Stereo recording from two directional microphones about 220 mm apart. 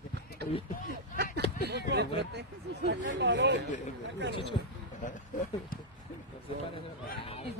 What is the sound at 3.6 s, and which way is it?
Speech, 35° left (ahead or behind).